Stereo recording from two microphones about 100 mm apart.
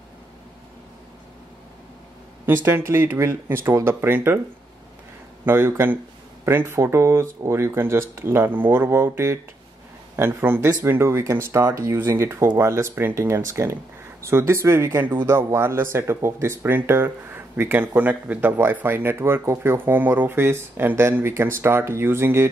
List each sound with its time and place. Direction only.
2.4 s speech: 25° right (ahead or behind)
5.4 s speech: 25° right (ahead or behind)